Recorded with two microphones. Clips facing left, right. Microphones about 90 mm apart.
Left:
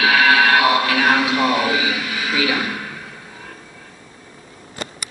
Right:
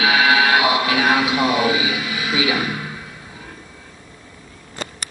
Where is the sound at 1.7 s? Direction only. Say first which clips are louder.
Even; 40° left (ahead or behind).